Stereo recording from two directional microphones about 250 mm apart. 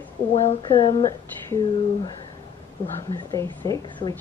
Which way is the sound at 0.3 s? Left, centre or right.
Left.